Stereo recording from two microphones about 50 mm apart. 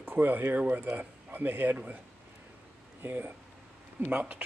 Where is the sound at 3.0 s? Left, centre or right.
Right.